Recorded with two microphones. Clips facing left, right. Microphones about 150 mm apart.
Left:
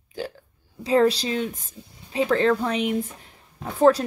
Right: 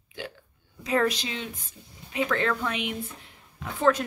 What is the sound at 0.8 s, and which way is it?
A woman's voice, 30° left (ahead or behind).